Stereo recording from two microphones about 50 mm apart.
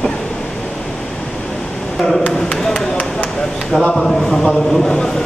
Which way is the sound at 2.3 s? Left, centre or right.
Centre.